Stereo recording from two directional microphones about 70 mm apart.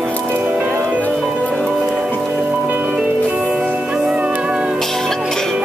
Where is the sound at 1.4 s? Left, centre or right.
Centre.